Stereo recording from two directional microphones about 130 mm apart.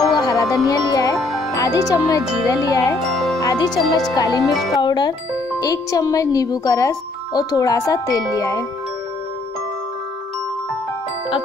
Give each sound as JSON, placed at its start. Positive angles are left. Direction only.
{"t": 0.2, "sound": "music", "side_deg": 25}
{"t": 1.1, "sound": "music", "side_deg": 0}
{"t": 1.5, "sound": "speech", "side_deg": 25}
{"t": 3.0, "sound": "music", "side_deg": 0}
{"t": 3.3, "sound": "speech", "side_deg": 30}